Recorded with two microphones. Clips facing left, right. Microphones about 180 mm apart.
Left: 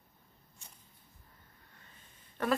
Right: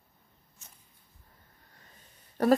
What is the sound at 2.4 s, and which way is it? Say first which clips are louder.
Speech: right 8 dB; 40° right (ahead or behind).